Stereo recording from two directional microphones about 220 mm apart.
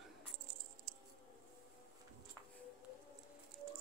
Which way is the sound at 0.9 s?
35° right (ahead or behind).